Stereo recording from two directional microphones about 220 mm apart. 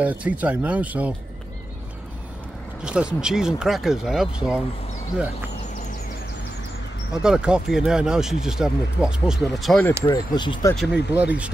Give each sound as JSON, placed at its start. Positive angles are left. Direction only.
{"t": 0.0, "sound": "speech", "side_deg": -5}
{"t": 2.8, "sound": "speech", "side_deg": -5}
{"t": 7.2, "sound": "speech", "side_deg": -5}
{"t": 10.0, "sound": "speech", "side_deg": 20}
{"t": 10.8, "sound": "speech", "side_deg": -5}